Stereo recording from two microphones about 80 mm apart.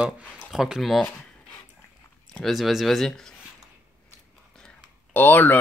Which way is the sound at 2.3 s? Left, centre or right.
Centre.